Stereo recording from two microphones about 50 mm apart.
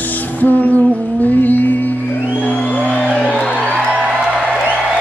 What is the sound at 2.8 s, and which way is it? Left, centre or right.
Music, left.